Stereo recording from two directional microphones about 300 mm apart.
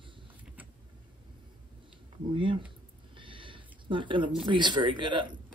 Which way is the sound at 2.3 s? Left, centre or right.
Centre.